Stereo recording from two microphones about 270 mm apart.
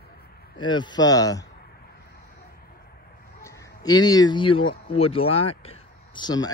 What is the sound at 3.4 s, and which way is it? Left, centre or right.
Speech, centre.